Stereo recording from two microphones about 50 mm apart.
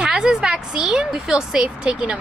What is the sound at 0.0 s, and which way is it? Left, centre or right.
A woman's voice, centre.